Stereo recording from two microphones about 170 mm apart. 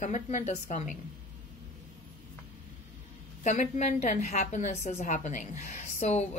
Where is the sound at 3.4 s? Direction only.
45° left (ahead or behind).